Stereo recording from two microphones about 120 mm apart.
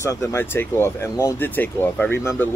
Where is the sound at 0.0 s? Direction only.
25° left (ahead or behind).